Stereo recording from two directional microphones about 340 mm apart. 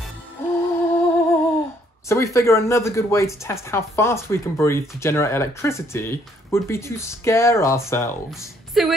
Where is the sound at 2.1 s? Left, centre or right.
Centre.